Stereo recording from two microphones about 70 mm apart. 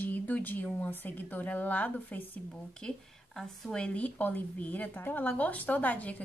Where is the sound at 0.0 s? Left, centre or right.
Left.